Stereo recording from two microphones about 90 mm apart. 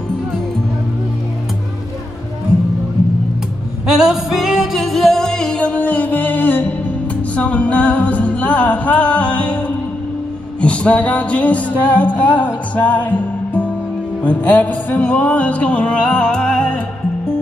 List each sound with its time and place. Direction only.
3.8 s music: 5° right (ahead or behind); by 16.8 s 10° left (ahead or behind)